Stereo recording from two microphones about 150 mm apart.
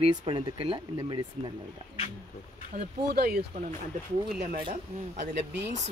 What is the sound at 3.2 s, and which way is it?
Speech, 90° right.